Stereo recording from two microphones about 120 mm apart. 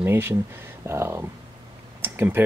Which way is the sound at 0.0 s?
20° right (ahead or behind).